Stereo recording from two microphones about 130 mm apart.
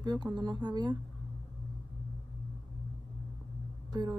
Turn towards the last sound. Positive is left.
turn(degrees=-30)  # may be behind; listen again after turning